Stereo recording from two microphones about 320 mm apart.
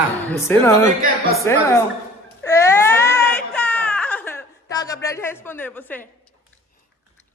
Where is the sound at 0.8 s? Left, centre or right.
Right.